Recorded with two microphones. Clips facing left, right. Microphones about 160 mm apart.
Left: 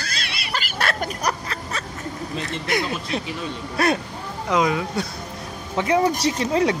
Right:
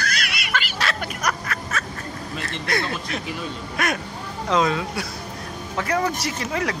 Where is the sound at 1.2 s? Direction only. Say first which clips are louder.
Right 2 dB; 30° left (ahead or behind).